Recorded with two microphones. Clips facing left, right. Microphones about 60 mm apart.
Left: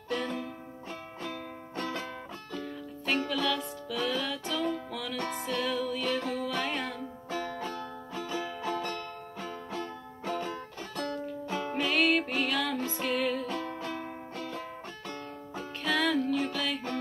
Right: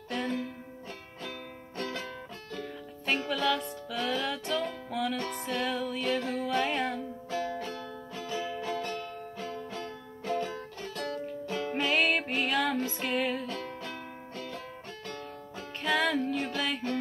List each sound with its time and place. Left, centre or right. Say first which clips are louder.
0.1 s music: even; centre
1.8 s music: left 1 dB; centre
2.5 s music: left 1 dB; centre
8.5 s music: even; left
11.7 s music: left 1 dB; centre
15.8 s music: even; centre